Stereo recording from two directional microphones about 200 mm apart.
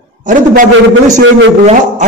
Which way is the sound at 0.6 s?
40° right (ahead or behind).